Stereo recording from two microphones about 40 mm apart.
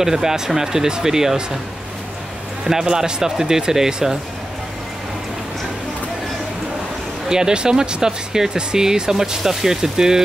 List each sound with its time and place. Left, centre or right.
0.0 s speech: centre
2.6 s speech: centre
7.2 s speech: centre